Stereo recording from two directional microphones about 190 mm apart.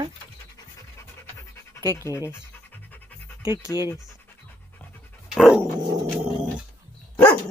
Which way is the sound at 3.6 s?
15° left (ahead or behind).